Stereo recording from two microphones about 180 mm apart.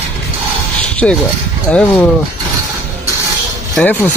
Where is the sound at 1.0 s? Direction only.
5° left (ahead or behind).